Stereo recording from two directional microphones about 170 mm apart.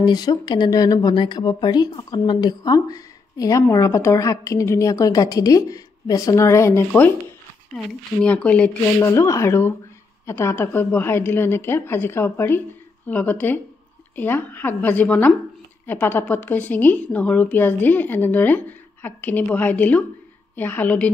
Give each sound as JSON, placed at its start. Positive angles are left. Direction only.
{"t": 0.0, "sound": "speech", "side_deg": 25}
{"t": 7.7, "sound": "a woman's voice", "side_deg": 5}